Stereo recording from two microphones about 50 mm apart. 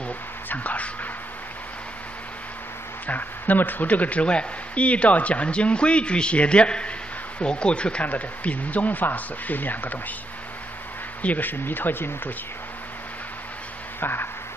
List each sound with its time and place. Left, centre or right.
0.5 s speech: left
3.1 s a man's voice: left
11.2 s speech: left
13.9 s a sound: left